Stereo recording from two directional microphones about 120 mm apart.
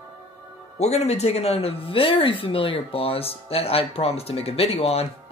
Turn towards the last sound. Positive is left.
turn(degrees=55)  # may be behind; listen again after turning